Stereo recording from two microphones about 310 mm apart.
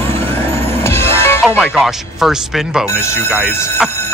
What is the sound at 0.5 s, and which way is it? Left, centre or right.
Music, centre.